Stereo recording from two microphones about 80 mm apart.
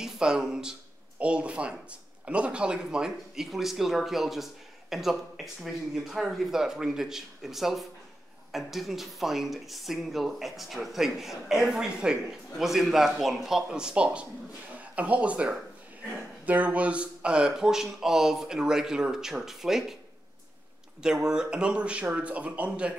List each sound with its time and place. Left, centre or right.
0.0 s speech: centre
21.0 s speech: centre